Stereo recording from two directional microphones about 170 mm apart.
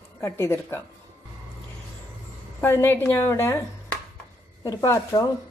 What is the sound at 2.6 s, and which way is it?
Speech, 15° left (ahead or behind).